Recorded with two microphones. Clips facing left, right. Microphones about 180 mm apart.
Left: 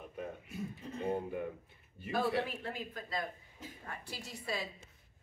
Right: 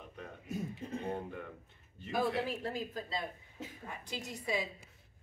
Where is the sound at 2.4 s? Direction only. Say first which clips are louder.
Right 3 dB; 40° right (ahead or behind).